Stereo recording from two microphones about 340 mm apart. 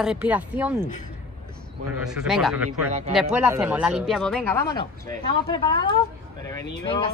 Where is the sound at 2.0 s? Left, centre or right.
Centre.